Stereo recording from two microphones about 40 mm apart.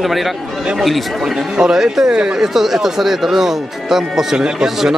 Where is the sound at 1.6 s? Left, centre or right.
Centre.